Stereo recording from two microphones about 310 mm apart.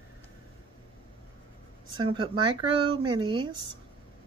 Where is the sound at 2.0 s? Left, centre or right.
Centre.